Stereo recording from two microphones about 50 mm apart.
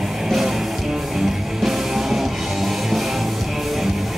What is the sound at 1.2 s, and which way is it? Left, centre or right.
Music, centre.